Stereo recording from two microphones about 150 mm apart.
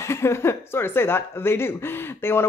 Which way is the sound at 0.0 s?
15° left (ahead or behind).